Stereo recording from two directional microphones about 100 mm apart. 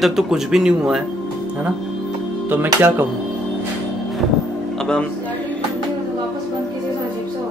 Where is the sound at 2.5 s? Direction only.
20° right (ahead or behind).